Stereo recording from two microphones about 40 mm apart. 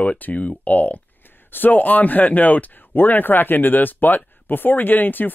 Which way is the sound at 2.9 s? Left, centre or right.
Left.